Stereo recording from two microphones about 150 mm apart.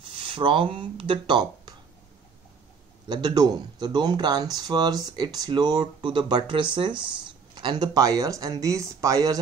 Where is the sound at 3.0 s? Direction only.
30° right (ahead or behind).